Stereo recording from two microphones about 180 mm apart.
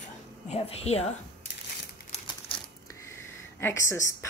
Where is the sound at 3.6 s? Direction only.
15° left (ahead or behind).